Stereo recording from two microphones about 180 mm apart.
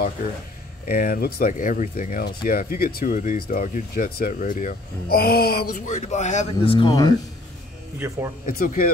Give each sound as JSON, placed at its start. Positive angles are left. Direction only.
{"t": 0.8, "sound": "speech", "side_deg": 55}
{"t": 8.5, "sound": "speech", "side_deg": 50}